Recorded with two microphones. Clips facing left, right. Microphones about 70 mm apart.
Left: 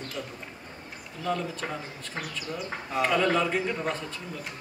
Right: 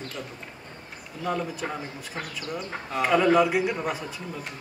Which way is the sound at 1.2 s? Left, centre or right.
Centre.